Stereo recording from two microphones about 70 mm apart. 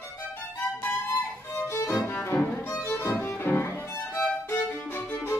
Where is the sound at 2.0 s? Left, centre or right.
Left.